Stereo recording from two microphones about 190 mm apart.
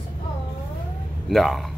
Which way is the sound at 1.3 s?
Centre (ahead or behind).